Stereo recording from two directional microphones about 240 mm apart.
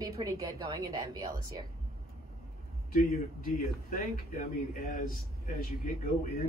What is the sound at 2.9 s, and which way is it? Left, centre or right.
A man's voice, left.